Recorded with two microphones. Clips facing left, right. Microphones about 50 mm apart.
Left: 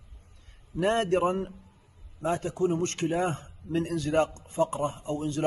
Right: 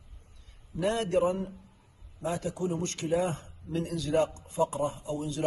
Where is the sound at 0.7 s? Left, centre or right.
Left.